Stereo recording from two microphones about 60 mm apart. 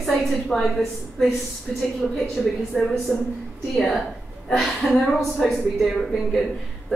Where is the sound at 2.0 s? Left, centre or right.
Centre.